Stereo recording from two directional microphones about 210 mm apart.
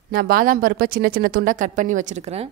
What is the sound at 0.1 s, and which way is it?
Speech, 45° right (ahead or behind).